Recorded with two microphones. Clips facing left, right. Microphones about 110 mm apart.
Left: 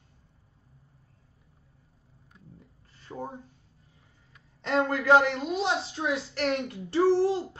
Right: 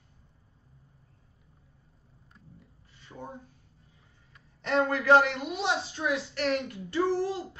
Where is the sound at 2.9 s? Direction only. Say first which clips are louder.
Left 5 dB; 40° left (ahead or behind).